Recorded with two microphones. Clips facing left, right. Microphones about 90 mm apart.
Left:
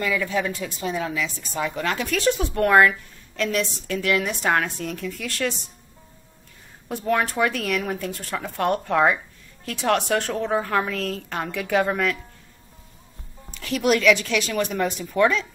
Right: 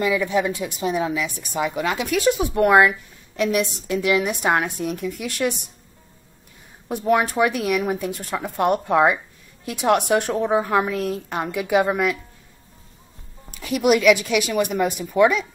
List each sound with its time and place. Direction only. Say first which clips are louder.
0.0 s speech: right 4 dB; 15° right (ahead or behind)
6.9 s speech: right 3 dB; 15° right (ahead or behind)
13.5 s speech: right 3 dB; 10° right (ahead or behind)